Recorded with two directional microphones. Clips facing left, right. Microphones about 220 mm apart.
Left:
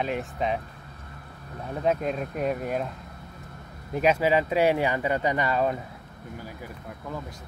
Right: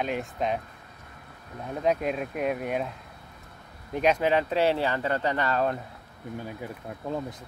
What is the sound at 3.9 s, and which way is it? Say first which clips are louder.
Speech: left 1 dB; 5° left (ahead or behind).